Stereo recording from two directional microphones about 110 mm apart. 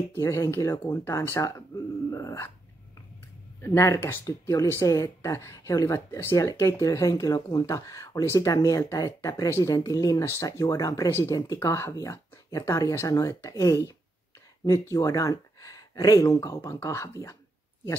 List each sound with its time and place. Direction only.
0.1 s a woman's voice: 25° left (ahead or behind)
2.0 s dog: 25° left (ahead or behind)
3.6 s a woman's voice: 25° left (ahead or behind)